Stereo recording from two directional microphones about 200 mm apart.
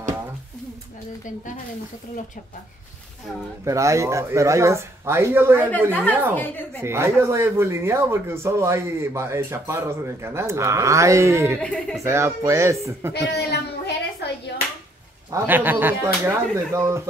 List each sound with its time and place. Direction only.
3.6 s a man's voice: 15° right (ahead or behind)
6.3 s speech: 10° left (ahead or behind)
6.8 s a man's voice: 15° right (ahead or behind)
11.6 s speech: 5° left (ahead or behind)
12.0 s a man's voice: 15° right (ahead or behind)
13.1 s a sound: 55° left (ahead or behind)
15.3 s a man's voice: 10° right (ahead or behind)